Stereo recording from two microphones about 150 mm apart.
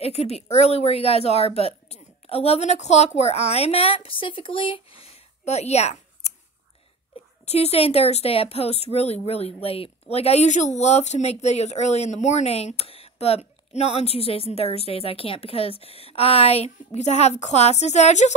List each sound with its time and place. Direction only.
0.0 s speech: 45° left (ahead or behind)
7.4 s speech: 45° left (ahead or behind)